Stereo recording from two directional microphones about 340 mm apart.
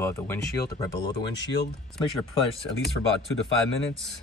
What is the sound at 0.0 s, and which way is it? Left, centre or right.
Speech, centre.